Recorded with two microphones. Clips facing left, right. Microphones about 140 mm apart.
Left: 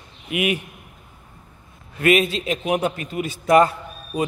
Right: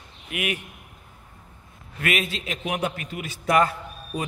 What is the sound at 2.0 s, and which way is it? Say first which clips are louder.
A man's voice: left 9 dB; 25° left (ahead or behind).